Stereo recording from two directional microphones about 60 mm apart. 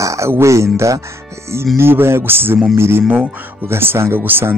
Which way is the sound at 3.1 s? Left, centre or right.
Right.